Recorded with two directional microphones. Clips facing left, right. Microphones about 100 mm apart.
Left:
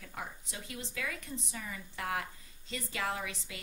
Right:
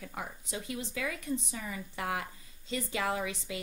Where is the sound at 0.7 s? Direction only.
15° right (ahead or behind).